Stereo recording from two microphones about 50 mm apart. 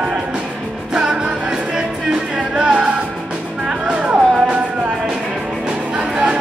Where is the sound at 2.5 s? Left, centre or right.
Right.